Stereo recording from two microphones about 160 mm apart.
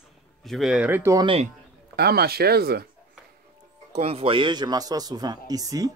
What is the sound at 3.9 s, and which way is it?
A man's voice, 40° right (ahead or behind).